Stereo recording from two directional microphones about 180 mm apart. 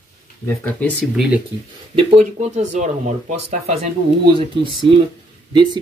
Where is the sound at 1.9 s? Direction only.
35° right (ahead or behind).